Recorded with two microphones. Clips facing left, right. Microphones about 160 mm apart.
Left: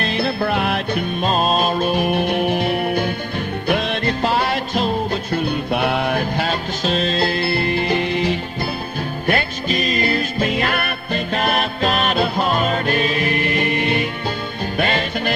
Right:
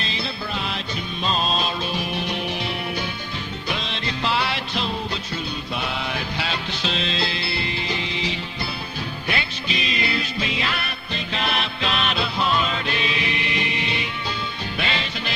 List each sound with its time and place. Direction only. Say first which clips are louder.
0.0 s music: left 10 dB; 60° left (ahead or behind)